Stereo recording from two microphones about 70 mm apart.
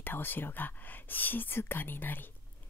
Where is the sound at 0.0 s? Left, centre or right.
Left.